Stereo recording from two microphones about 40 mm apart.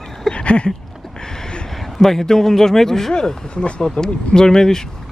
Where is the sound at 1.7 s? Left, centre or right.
Centre.